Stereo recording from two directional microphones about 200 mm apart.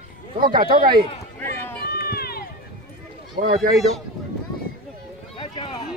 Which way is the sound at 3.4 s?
40° right (ahead or behind).